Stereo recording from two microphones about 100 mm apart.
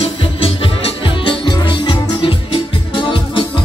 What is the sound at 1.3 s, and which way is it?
Music, 50° left (ahead or behind).